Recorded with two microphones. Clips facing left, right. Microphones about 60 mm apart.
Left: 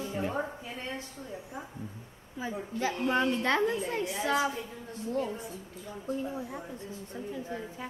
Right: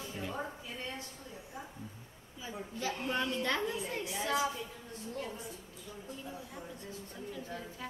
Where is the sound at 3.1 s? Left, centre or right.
Left.